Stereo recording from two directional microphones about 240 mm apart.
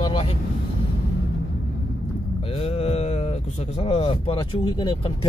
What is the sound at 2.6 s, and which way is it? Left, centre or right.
Mantra, left.